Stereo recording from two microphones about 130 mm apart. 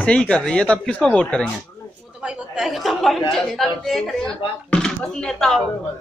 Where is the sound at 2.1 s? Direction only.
10° right (ahead or behind).